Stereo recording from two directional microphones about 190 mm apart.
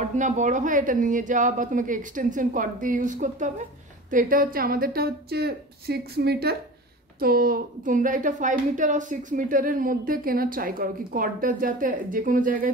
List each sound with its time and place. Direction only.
0.0 s a woman's voice: 40° right (ahead or behind)